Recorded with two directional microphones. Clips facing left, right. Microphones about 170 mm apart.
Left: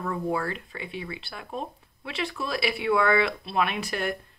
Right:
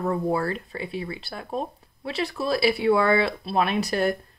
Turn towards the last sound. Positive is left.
turn(degrees=-35)  # may be behind; listen again after turning